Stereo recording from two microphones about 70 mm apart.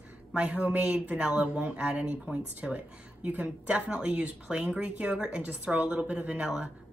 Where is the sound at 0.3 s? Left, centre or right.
Centre.